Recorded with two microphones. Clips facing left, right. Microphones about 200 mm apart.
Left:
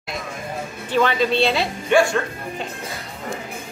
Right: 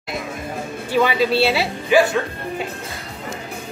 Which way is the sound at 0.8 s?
10° right (ahead or behind).